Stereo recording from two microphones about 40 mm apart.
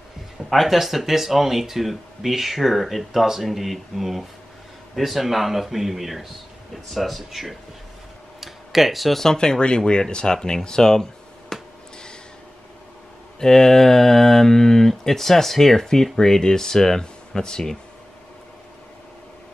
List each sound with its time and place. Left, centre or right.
0.5 s speech: centre
8.4 s tick-tock: centre
9.2 s speech: centre
9.8 s a sound: left
13.4 s speech: centre